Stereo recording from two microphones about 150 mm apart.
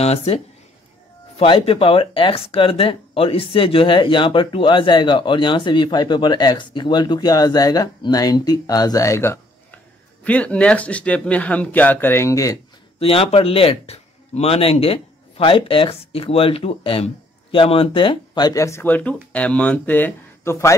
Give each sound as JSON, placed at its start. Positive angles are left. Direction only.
{"t": 0.0, "sound": "speech", "side_deg": 45}
{"t": 13.0, "sound": "speech", "side_deg": 40}